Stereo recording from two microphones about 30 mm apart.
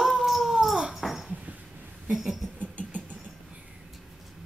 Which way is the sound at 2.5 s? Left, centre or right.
Right.